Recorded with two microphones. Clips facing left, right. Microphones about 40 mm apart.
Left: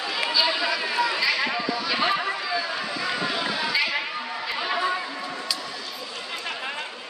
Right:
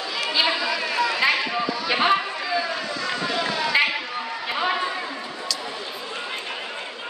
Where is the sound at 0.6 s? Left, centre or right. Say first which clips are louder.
Right 1 dB; centre.